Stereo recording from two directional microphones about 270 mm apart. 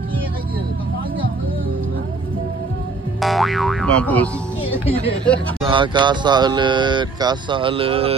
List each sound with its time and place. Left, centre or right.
3.2 s speech: centre
5.7 s speech: centre